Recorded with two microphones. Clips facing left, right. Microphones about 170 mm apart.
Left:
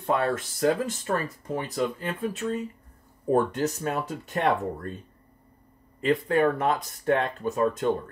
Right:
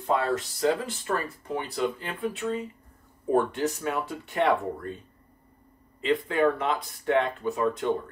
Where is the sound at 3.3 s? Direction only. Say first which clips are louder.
Left 1 dB; 40° left (ahead or behind).